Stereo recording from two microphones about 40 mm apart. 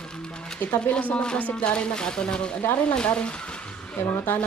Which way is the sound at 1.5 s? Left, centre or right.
Left.